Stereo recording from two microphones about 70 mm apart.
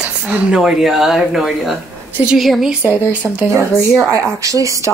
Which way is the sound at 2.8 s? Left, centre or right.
Right.